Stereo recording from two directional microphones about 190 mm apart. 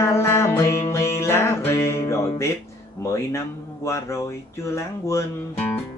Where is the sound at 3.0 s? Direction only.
15° left (ahead or behind).